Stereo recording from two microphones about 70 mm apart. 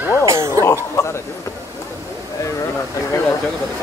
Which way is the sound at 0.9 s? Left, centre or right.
Left.